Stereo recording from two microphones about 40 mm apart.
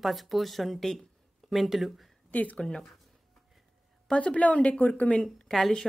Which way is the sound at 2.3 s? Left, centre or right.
Left.